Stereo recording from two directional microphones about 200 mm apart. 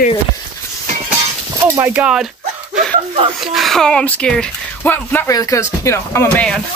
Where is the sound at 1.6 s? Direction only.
10° right (ahead or behind).